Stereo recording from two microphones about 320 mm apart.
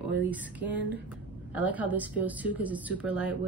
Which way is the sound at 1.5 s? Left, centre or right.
Centre.